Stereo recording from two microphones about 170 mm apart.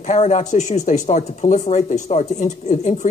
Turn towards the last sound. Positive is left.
turn(degrees=45)  # may be behind; listen again after turning